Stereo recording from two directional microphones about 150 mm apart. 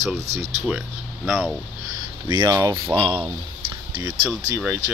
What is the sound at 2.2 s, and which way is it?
Speech, 30° right (ahead or behind).